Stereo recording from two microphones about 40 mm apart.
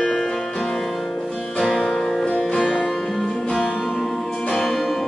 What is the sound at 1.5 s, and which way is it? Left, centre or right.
Music, centre.